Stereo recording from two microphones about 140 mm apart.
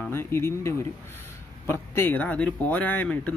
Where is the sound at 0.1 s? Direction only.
15° left (ahead or behind).